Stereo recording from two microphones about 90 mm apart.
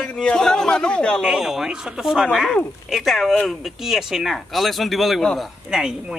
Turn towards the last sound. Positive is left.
turn(degrees=-5)  # may be behind; listen again after turning